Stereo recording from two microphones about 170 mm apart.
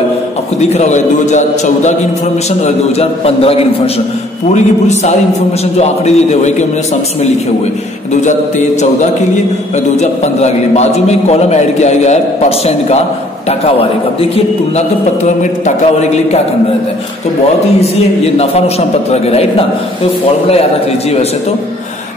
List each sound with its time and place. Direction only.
0.6 s a man's voice: 40° left (ahead or behind)
2.6 s a man's voice: 35° left (ahead or behind)
8.2 s a man's voice: 45° left (ahead or behind)
15.2 s a man's voice: 45° left (ahead or behind)
17.7 s a man's voice: 40° left (ahead or behind)